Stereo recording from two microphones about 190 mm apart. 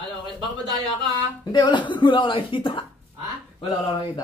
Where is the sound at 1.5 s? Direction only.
25° left (ahead or behind).